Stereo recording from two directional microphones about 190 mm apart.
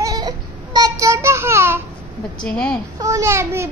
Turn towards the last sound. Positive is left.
turn(degrees=-15)  # may be behind; listen again after turning